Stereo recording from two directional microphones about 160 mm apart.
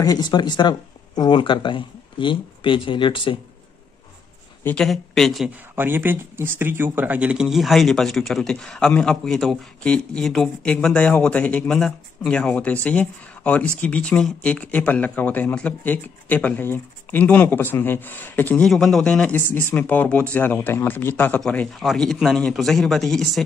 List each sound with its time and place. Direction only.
0.0 s speech: 25° left (ahead or behind)
4.6 s speech: 5° left (ahead or behind)
5.8 s speech: 15° right (ahead or behind)